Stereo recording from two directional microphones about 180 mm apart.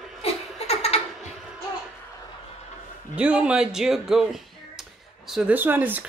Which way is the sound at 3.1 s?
5° right (ahead or behind).